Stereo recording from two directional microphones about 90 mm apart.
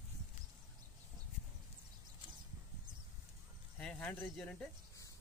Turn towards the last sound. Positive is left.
turn(degrees=5)  # may be behind; listen again after turning